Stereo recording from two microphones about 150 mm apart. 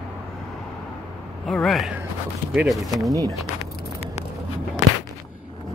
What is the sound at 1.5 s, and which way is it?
Speech, centre (ahead or behind).